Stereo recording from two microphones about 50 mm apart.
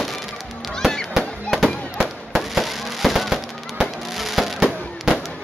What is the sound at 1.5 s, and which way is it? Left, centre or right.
Fireworks, centre.